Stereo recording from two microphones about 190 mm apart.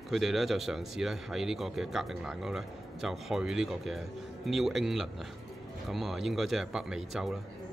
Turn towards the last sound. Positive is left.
turn(degrees=-5)  # may be behind; listen again after turning